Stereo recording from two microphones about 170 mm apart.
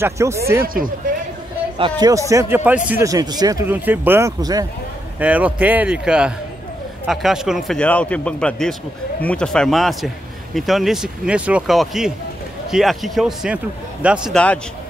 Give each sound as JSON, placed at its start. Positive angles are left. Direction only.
{"t": 0.0, "sound": "a man's voice", "side_deg": -15}
{"t": 1.8, "sound": "a man's voice", "side_deg": -25}
{"t": 3.1, "sound": "speech", "side_deg": -25}
{"t": 3.7, "sound": "a man's voice", "side_deg": -10}
{"t": 5.2, "sound": "a man's voice", "side_deg": -10}
{"t": 14.3, "sound": "a man's voice", "side_deg": 5}